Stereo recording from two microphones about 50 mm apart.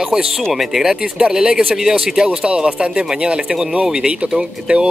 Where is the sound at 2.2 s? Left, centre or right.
Right.